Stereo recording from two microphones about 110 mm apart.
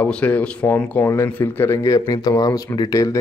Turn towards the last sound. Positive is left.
turn(degrees=30)  # may be behind; listen again after turning